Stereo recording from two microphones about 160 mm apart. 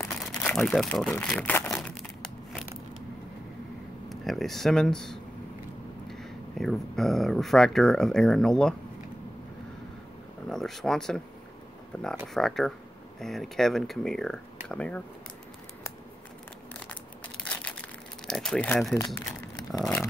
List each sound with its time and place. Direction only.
0.3 s speech: 5° left (ahead or behind)
1.4 s crumpling: 10° left (ahead or behind)
4.1 s speech: centre (ahead or behind)
10.5 s speech: centre (ahead or behind)
17.5 s crushing: 10° left (ahead or behind)
18.2 s speech: 5° left (ahead or behind)
18.9 s speech: 20° left (ahead or behind)
19.8 s speech: centre (ahead or behind)